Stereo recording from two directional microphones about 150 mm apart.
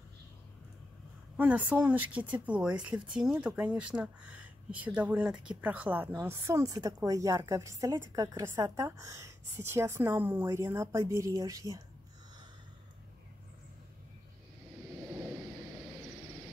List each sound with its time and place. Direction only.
1.3 s speech: 10° right (ahead or behind)